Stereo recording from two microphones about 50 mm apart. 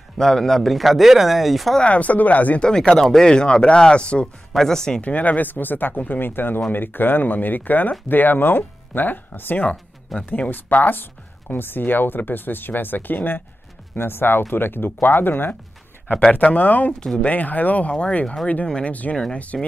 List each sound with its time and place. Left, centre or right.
0.2 s a man's voice: centre
1.8 s speech: left
2.6 s speech: centre
4.6 s speech: centre
5.0 s speech: left
16.3 s speech: left
17.9 s speech: centre
18.9 s speech: left